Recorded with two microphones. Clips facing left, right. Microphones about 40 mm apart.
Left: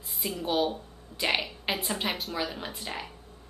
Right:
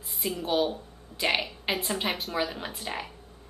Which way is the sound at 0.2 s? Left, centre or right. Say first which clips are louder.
Right 1 dB; centre.